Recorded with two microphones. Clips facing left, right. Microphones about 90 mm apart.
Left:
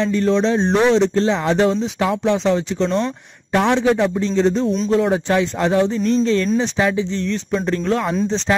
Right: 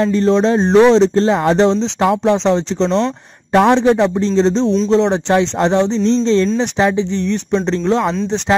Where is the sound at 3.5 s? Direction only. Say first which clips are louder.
Right 5 dB; 30° right (ahead or behind).